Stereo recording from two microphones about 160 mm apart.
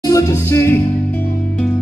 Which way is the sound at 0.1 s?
20° left (ahead or behind).